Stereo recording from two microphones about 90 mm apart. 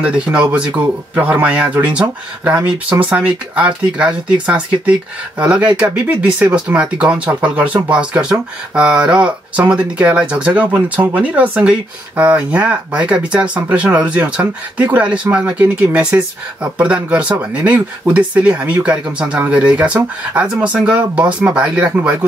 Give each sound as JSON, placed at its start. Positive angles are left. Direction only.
{"t": 0.0, "sound": "speech", "side_deg": -10}